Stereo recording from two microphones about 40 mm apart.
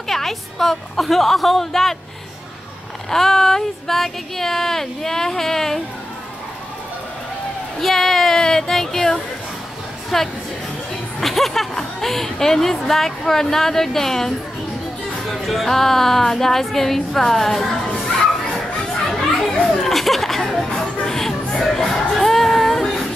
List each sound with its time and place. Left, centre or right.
0.1 s a woman's voice: centre
3.1 s speech: centre
7.8 s a woman's voice: centre
11.1 s a sound: centre
11.7 s speech: centre
18.4 s a sound: left
19.0 s children playing: centre
19.7 s speech: centre
20.8 s music: centre
21.2 s music: centre